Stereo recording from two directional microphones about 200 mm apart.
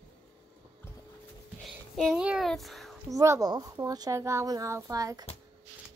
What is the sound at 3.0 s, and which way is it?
Speech, 15° right (ahead or behind).